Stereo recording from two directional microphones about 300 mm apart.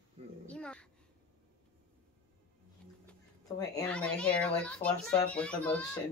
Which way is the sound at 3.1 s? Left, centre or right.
Centre.